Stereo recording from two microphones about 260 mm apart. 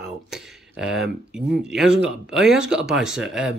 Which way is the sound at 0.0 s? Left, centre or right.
Centre.